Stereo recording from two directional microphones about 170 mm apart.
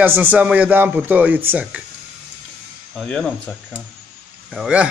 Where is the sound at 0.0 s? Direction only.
10° right (ahead or behind).